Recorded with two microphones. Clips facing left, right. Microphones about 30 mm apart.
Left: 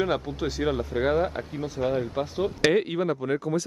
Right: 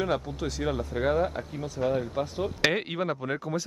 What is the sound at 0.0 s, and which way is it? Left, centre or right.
Speech, centre.